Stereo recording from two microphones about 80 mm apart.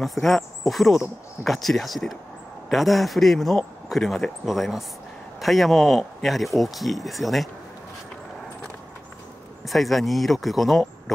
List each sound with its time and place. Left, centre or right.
0.0 s speech: centre
9.7 s speech: centre